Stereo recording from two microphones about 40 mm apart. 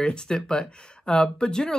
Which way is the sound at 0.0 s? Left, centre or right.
Centre.